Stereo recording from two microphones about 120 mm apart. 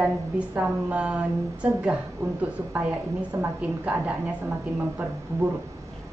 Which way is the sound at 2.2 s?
25° right (ahead or behind).